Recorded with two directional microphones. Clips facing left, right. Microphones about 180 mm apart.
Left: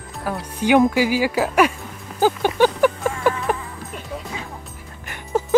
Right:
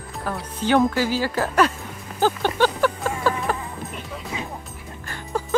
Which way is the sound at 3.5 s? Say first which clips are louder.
Left 3 dB; 15° left (ahead or behind).